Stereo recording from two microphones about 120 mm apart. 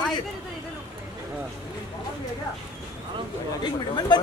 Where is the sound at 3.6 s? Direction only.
40° left (ahead or behind).